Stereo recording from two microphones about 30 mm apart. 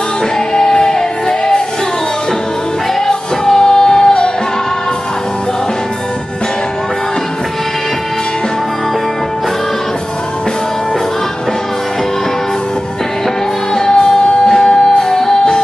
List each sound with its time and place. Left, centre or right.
0.6 s music: left
3.4 s music: centre
14.5 s music: centre